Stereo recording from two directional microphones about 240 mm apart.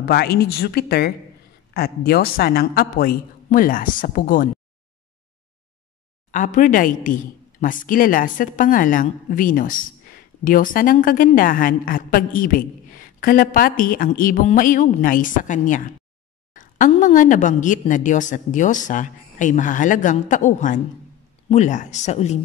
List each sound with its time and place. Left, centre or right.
0.0 s speech: left
6.3 s speech: left